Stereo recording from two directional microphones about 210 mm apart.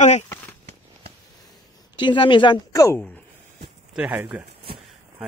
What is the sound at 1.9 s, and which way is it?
Speech, 20° left (ahead or behind).